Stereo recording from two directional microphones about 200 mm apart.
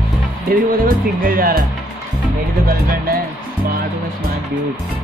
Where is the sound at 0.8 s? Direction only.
45° right (ahead or behind).